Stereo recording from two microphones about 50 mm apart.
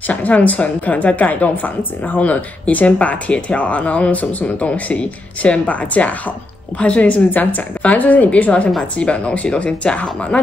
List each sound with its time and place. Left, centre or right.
0.1 s a woman's voice: left